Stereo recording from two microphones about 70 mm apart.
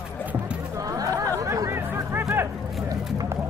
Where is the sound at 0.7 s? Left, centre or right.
Right.